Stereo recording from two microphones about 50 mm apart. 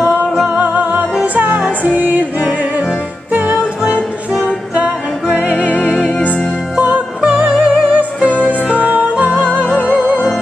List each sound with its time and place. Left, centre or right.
0.0 s music: right
3.3 s music: right
7.2 s music: right